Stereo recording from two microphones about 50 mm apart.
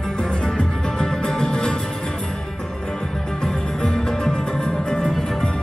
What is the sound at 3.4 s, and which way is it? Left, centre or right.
Music, centre.